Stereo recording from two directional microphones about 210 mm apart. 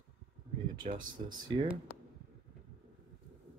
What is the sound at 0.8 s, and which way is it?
Speech, 40° right (ahead or behind).